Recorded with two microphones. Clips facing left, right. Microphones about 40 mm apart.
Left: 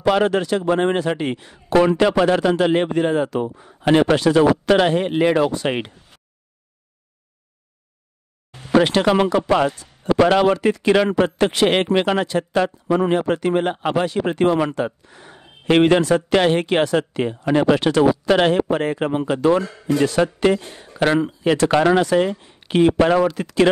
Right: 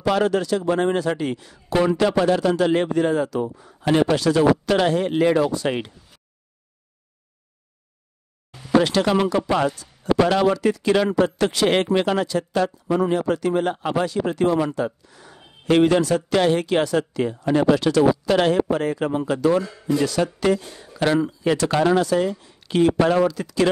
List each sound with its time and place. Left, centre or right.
0.0 s a man's voice: left
8.7 s a man's voice: left
19.6 s a man's voice: left
23.2 s a man's voice: left